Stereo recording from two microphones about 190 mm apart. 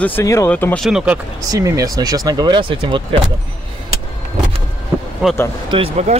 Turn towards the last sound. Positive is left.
turn(degrees=-30)  # may be behind; listen again after turning